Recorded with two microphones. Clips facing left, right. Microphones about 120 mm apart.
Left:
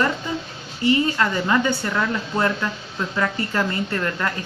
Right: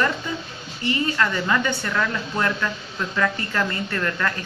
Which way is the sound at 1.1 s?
20° left (ahead or behind).